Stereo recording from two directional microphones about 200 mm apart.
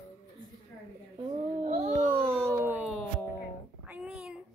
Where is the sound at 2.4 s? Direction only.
10° right (ahead or behind).